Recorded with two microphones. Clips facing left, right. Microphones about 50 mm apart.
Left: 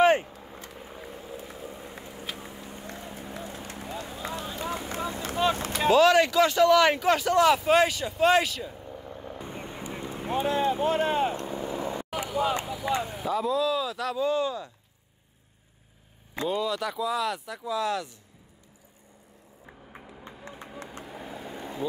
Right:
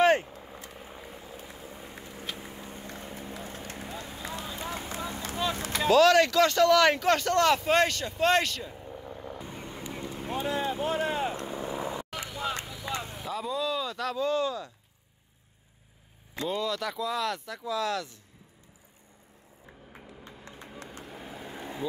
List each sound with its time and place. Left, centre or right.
1.1 s vehicle: left
3.2 s vehicle: left
5.9 s speech: centre
9.5 s vehicle: left
10.3 s boat: left
10.9 s vehicle: left
12.1 s vehicle: centre
13.0 s speech: centre
16.4 s speech: centre
21.0 s vehicle: centre